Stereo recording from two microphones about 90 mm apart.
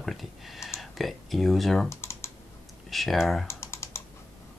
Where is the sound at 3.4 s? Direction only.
30° left (ahead or behind).